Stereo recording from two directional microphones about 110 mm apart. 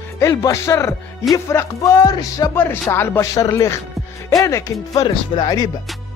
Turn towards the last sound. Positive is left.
turn(degrees=40)  # may be behind; listen again after turning